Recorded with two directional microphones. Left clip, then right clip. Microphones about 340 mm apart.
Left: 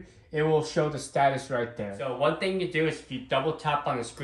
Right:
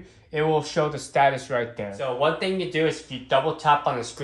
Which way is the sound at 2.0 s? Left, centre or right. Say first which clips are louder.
Right 3 dB; centre.